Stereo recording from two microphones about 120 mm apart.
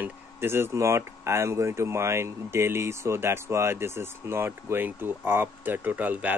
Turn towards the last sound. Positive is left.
turn(degrees=-15)  # may be behind; listen again after turning